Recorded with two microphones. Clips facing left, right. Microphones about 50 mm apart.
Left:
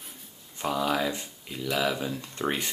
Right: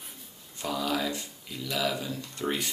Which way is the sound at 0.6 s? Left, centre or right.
Left.